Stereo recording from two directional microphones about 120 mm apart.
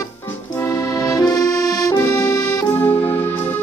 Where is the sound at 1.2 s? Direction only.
30° left (ahead or behind).